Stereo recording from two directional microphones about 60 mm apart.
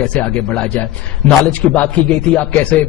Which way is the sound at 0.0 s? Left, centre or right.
Left.